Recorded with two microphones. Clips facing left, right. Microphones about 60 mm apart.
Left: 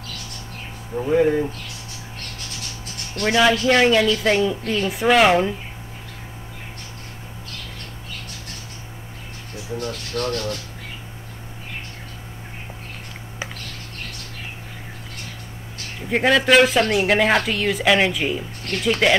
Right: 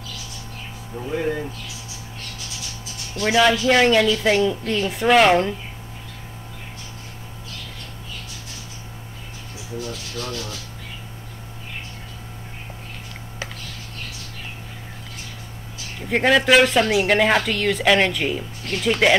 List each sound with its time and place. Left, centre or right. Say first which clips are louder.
1.0 s speech: left 7 dB; left
3.3 s a woman's voice: even; centre
9.8 s rub: left 4 dB; left
16.1 s a woman's voice: even; centre